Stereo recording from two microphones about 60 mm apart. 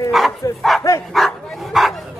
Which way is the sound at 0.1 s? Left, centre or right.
Centre.